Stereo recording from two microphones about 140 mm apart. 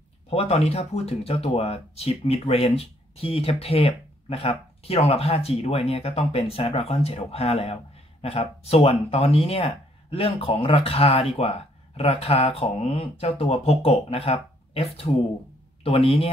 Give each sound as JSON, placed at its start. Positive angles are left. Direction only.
{"t": 0.3, "sound": "speech", "side_deg": 45}